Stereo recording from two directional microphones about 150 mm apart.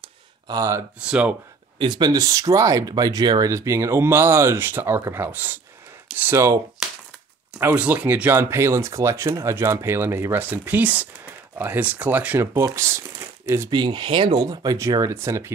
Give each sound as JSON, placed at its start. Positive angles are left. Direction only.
{"t": 0.5, "sound": "speech", "side_deg": -20}
{"t": 0.9, "sound": "speech", "side_deg": -5}
{"t": 1.8, "sound": "speech", "side_deg": -30}